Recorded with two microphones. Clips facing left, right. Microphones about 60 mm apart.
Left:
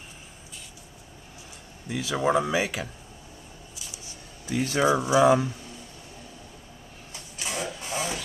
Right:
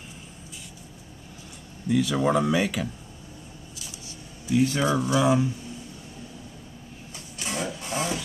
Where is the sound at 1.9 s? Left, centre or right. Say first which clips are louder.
Right 3 dB; centre.